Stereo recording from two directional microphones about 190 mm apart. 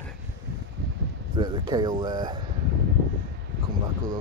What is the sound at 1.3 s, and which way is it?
Speech, 25° right (ahead or behind).